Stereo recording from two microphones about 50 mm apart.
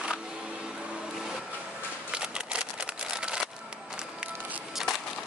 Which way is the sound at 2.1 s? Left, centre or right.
Centre.